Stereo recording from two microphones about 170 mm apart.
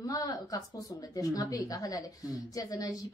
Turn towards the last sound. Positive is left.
turn(degrees=20)  # may be behind; listen again after turning